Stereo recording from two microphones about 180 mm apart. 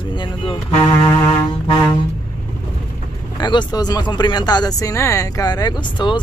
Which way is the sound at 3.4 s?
25° left (ahead or behind).